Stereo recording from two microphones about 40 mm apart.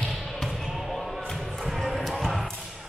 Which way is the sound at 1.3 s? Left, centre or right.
Centre.